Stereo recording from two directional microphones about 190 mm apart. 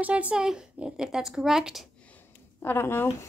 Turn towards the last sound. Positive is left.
turn(degrees=10)  # may be behind; listen again after turning